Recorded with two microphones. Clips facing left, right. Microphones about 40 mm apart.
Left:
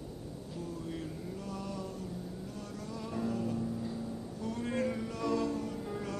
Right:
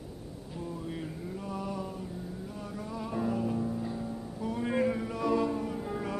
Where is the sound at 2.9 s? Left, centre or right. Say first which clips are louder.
Right 4 dB; centre.